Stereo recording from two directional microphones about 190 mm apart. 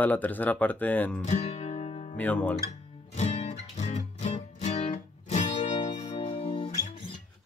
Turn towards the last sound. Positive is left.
turn(degrees=25)  # may be behind; listen again after turning